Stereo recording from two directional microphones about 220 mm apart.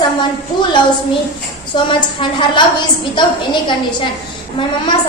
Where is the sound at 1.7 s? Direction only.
20° left (ahead or behind).